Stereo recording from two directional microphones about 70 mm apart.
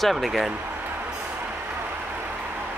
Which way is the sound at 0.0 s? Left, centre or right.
Centre.